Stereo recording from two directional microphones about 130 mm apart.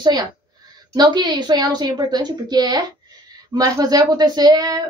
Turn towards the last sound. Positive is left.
turn(degrees=-30)  # may be behind; listen again after turning